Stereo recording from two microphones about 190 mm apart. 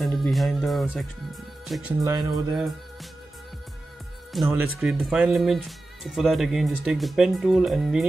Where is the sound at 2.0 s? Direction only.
20° right (ahead or behind).